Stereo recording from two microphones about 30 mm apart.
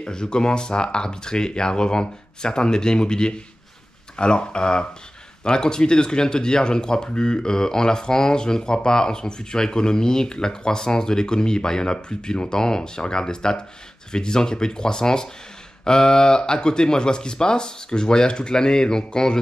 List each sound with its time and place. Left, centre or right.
0.0 s speech: left